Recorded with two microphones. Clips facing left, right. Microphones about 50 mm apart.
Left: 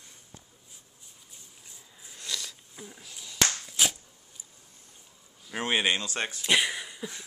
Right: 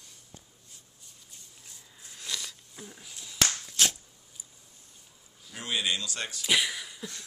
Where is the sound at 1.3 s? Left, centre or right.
Centre.